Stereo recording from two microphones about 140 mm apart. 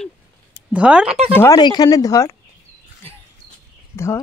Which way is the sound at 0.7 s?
5° right (ahead or behind).